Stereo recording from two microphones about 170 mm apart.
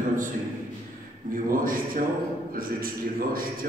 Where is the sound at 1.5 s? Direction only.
55° right (ahead or behind).